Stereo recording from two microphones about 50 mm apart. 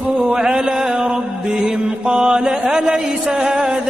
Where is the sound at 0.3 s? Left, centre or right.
Centre.